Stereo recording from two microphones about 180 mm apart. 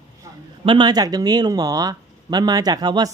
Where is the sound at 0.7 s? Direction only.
25° right (ahead or behind).